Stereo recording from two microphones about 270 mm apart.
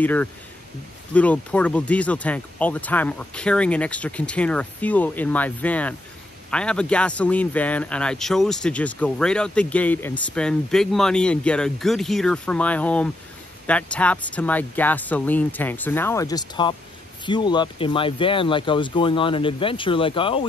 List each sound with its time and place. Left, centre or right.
0.0 s speech: centre